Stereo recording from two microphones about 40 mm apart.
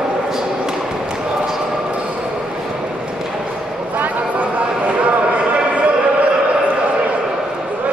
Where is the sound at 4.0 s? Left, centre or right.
Right.